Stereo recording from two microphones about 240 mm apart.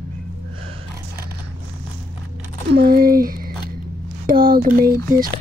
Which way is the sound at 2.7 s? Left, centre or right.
Right.